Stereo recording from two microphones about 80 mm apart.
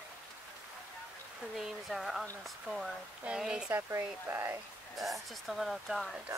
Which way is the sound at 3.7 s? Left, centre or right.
Right.